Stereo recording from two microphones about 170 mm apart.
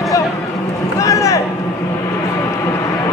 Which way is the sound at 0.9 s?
20° left (ahead or behind).